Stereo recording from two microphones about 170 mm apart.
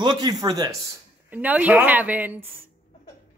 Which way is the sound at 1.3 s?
10° right (ahead or behind).